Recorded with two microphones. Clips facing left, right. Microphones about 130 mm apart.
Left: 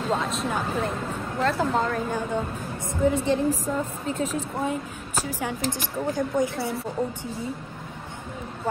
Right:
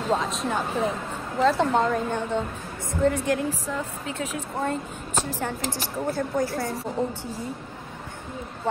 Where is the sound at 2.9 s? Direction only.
20° left (ahead or behind).